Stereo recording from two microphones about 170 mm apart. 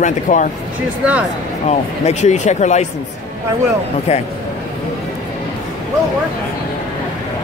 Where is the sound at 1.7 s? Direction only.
40° left (ahead or behind).